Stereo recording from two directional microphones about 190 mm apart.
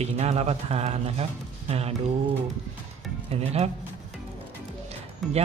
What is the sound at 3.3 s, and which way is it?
Speech, 35° right (ahead or behind).